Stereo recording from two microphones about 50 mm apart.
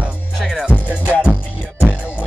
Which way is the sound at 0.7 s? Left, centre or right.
Left.